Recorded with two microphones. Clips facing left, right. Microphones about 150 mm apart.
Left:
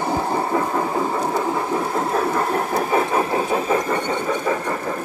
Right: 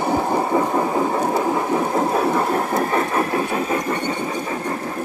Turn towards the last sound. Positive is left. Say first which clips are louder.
# left 1 dB
turn(degrees=25)  # may be behind; listen again after turning